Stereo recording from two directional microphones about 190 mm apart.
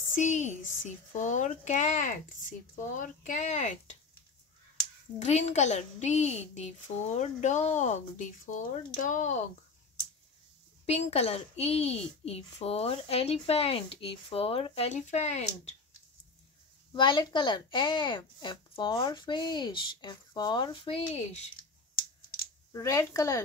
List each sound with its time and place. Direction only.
0.1 s a child's voice: 40° left (ahead or behind)
5.2 s a child's voice: 35° left (ahead or behind)
10.9 s a child's voice: 35° left (ahead or behind)
16.9 s speech: 25° left (ahead or behind)
22.7 s speech: 15° left (ahead or behind)